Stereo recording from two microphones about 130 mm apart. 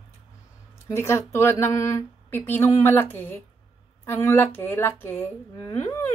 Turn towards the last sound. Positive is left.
turn(degrees=15)  # may be behind; listen again after turning